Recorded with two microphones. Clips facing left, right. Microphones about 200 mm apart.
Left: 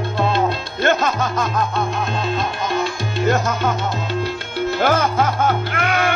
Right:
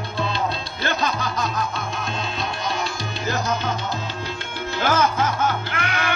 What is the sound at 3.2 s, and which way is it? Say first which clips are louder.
Salsa music: left 6 dB; 50° left (ahead or behind).